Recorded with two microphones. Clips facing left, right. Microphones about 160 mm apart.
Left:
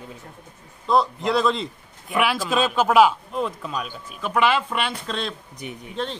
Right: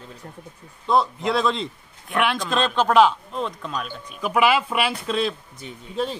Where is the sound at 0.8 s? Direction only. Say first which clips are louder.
Even; centre (ahead or behind).